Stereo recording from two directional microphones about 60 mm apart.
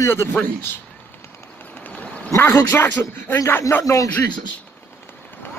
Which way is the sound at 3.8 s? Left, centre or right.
Left.